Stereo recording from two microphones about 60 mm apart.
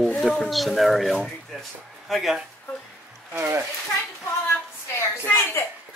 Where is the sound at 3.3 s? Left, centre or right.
Right.